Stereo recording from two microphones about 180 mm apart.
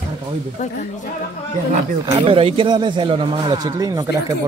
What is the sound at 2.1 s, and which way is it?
Speech, 30° right (ahead or behind).